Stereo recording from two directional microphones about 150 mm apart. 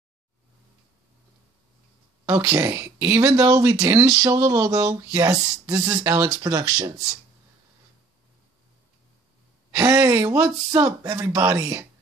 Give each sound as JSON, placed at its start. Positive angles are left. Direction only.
{"t": 2.2, "sound": "speech", "side_deg": -20}
{"t": 5.9, "sound": "speech", "side_deg": -10}
{"t": 6.4, "sound": "speech", "side_deg": -25}
{"t": 9.7, "sound": "speech", "side_deg": -20}